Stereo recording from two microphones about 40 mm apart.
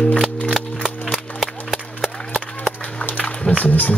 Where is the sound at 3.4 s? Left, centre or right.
Left.